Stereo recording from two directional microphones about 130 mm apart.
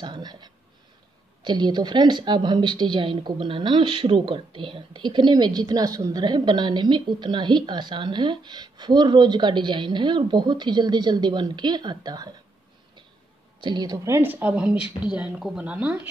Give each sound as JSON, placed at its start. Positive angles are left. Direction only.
{"t": 0.0, "sound": "a woman's voice", "side_deg": -35}
{"t": 13.6, "sound": "a woman's voice", "side_deg": -35}
{"t": 13.9, "sound": "speech", "side_deg": -20}